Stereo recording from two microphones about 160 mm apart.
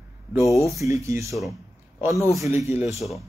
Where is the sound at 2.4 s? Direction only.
15° right (ahead or behind).